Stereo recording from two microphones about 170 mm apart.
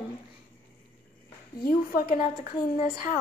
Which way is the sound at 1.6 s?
60° left (ahead or behind).